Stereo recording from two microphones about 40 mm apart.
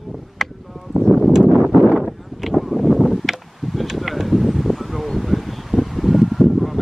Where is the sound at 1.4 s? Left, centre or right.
Right.